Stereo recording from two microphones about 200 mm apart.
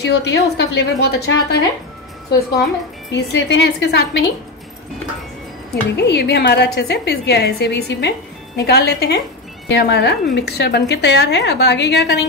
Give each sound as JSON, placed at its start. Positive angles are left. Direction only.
{"t": 0.0, "sound": "a woman's voice", "side_deg": 60}
{"t": 5.9, "sound": "a woman's voice", "side_deg": 55}